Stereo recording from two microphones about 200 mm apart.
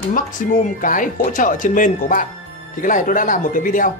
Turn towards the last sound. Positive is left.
turn(degrees=40)  # may be behind; listen again after turning